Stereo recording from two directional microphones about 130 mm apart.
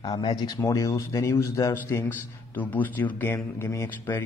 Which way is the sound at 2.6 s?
10° left (ahead or behind).